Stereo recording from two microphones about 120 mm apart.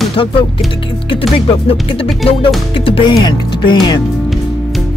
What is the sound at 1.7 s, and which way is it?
Speech, 50° left (ahead or behind).